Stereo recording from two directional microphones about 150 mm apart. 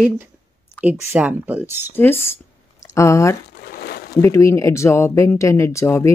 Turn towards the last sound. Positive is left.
turn(degrees=20)  # may be behind; listen again after turning